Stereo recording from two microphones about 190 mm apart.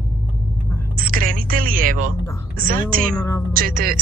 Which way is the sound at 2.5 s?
50° right (ahead or behind).